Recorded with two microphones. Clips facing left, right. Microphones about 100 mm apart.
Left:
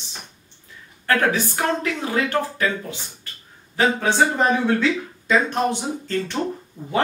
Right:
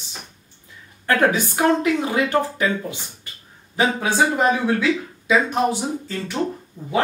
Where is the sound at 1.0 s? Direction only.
15° right (ahead or behind).